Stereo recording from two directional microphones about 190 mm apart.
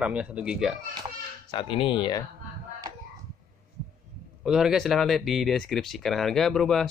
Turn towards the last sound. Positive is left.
turn(degrees=0)  # may be behind; listen again after turning